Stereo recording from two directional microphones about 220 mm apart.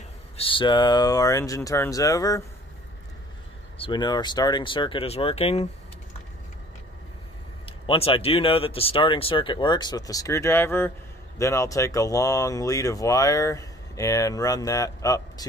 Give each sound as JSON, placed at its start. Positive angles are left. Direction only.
{"t": 0.4, "sound": "speech", "side_deg": 20}
{"t": 3.7, "sound": "speech", "side_deg": 20}
{"t": 7.6, "sound": "speech", "side_deg": 25}